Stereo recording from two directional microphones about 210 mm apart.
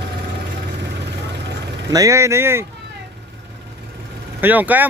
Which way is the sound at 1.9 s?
15° right (ahead or behind).